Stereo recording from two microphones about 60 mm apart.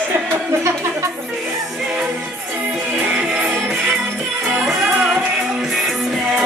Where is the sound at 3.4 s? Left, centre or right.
Centre.